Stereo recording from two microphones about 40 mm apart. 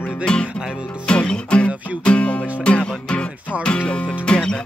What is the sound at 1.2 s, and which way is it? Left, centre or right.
Music, left.